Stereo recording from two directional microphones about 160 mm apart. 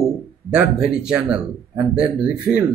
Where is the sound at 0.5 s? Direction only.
5° right (ahead or behind).